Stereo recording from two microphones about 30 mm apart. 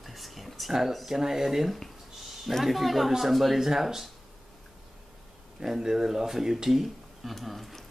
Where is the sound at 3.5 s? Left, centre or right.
Centre.